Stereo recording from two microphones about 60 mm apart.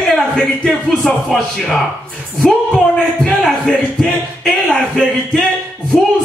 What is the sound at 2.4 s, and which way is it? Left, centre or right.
A man's voice, centre.